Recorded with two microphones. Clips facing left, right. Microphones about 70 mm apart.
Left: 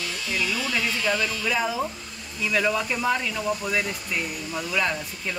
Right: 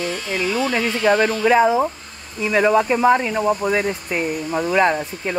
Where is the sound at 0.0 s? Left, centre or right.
Right.